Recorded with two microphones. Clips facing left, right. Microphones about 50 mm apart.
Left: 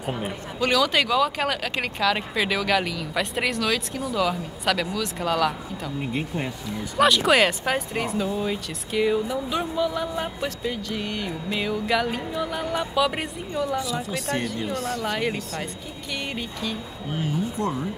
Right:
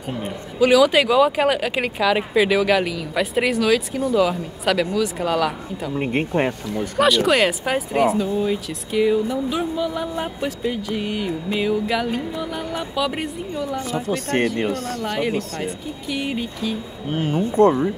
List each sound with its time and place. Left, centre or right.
0.6 s speech: centre
5.9 s speech: right
7.0 s speech: centre
14.0 s speech: right
15.6 s speech: centre
17.1 s speech: right